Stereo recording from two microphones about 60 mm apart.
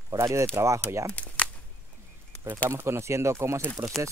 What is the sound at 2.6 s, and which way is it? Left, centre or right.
Speech, right.